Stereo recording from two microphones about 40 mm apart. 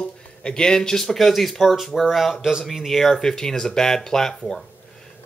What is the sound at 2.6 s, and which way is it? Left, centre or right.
Speech, centre.